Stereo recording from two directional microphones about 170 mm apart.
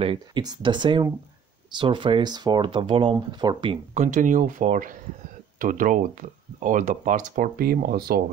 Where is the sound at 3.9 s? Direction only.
45° right (ahead or behind).